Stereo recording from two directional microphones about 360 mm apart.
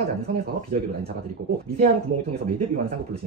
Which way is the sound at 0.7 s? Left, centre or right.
Right.